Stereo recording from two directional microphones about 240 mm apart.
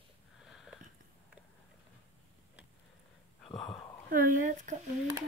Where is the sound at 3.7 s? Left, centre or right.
Centre.